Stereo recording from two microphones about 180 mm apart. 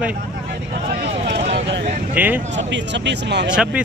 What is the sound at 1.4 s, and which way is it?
Vehicle, 35° right (ahead or behind).